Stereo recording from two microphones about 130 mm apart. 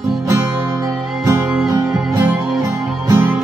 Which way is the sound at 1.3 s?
10° right (ahead or behind).